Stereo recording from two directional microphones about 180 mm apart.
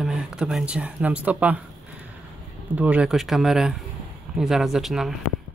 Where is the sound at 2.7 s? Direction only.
10° right (ahead or behind).